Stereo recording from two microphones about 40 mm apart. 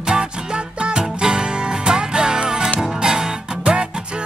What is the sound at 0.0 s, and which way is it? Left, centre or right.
Music, centre.